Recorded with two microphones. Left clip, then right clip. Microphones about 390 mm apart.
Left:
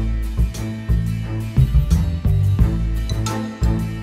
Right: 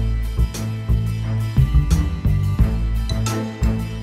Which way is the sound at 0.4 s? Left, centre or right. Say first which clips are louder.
Even; centre.